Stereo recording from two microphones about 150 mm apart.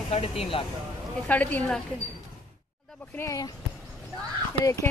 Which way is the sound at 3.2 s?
20° left (ahead or behind).